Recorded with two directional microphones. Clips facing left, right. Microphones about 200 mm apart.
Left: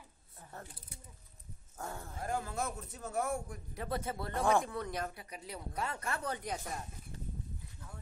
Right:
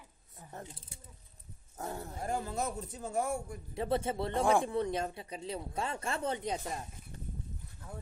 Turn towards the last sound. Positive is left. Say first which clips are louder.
# right 4 dB
turn(degrees=-20)  # may be behind; listen again after turning